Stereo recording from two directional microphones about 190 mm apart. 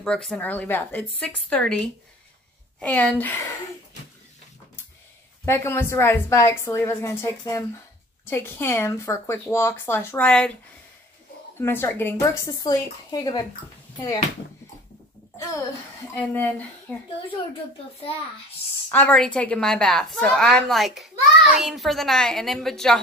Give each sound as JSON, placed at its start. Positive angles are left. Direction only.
{"t": 0.0, "sound": "a woman's voice", "side_deg": 5}
{"t": 5.4, "sound": "speech", "side_deg": 15}
{"t": 11.6, "sound": "speech", "side_deg": 10}
{"t": 16.2, "sound": "speech", "side_deg": 10}
{"t": 18.9, "sound": "a woman's voice", "side_deg": 10}